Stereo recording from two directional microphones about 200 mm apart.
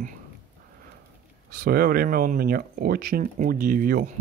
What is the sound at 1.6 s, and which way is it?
Speech, 50° right (ahead or behind).